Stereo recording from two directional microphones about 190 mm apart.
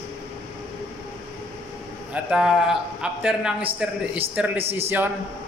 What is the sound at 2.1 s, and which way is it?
A man's voice, 5° right (ahead or behind).